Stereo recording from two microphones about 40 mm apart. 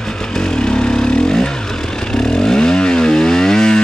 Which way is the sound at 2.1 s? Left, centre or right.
Centre.